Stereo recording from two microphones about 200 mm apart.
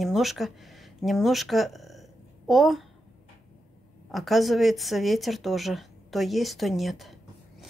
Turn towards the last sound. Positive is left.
turn(degrees=0)  # may be behind; listen again after turning